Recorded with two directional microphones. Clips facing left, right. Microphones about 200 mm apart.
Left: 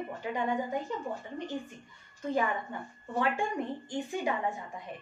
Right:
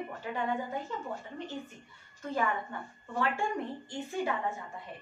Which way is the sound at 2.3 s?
15° left (ahead or behind).